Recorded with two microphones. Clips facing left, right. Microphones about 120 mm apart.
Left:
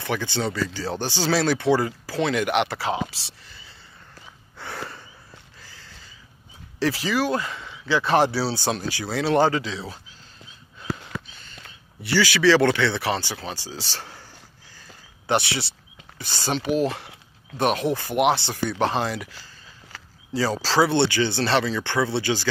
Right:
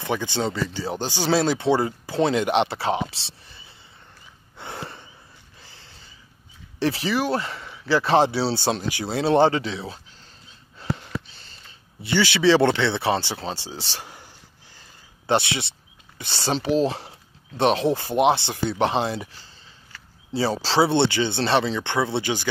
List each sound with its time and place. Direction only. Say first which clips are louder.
0.0 s speech: right 1 dB; 20° right (ahead or behind)
4.6 s snort: even; 20° right (ahead or behind)
5.6 s a sound: left 2 dB; 25° right (ahead or behind)
6.8 s speech: even; 30° right (ahead or behind)
10.8 s a sound: right 2 dB; 35° right (ahead or behind)
12.0 s speech: even; 25° right (ahead or behind)
15.2 s speech: right 1 dB; 25° right (ahead or behind)
20.3 s speech: even; 25° right (ahead or behind)